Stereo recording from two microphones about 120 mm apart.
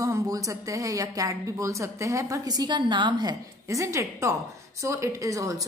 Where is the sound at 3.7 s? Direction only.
25° right (ahead or behind).